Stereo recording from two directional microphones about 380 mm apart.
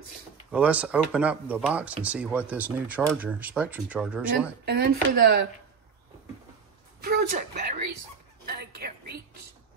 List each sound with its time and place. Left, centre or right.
0.5 s speech: centre
4.6 s speech: right
7.0 s a sound: right